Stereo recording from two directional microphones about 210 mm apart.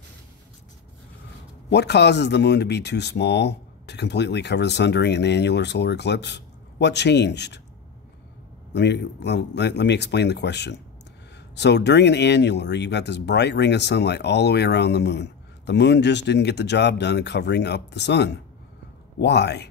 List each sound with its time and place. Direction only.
1.7 s speech: 55° left (ahead or behind)
8.7 s speech: 55° left (ahead or behind)